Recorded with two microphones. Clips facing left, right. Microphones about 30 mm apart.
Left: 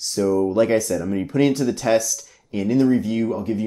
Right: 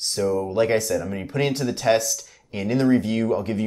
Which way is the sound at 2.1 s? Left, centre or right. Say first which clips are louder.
Left 3 dB; right.